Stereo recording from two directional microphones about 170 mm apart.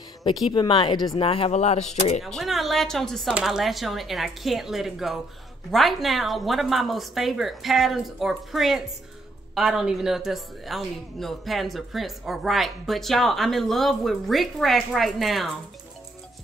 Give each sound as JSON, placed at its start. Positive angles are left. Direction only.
{"t": 0.5, "sound": "speech", "side_deg": 30}
{"t": 2.2, "sound": "speech", "side_deg": 0}